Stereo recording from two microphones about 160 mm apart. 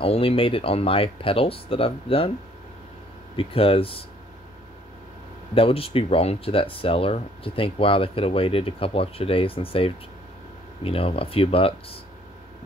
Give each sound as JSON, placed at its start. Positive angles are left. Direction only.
{"t": 0.0, "sound": "speech", "side_deg": 35}
{"t": 3.3, "sound": "speech", "side_deg": 35}
{"t": 5.5, "sound": "speech", "side_deg": 35}